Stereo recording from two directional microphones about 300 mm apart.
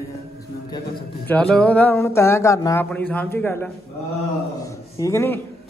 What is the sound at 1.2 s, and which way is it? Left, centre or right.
Speech, centre.